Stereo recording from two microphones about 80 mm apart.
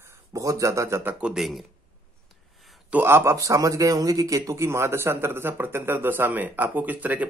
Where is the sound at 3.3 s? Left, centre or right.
Right.